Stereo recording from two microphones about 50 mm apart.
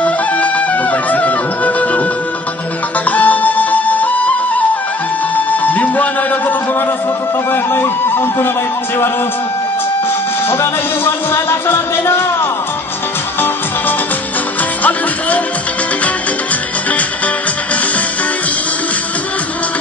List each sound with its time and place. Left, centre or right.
0.0 s music: left
3.1 s music: left
7.5 s speech: left
10.5 s music: left
14.8 s music: left